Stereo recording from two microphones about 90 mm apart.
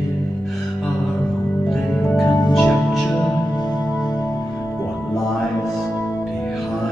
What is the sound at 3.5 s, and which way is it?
Music, 50° left (ahead or behind).